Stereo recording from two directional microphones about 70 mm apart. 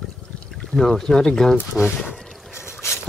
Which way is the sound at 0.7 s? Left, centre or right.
Centre.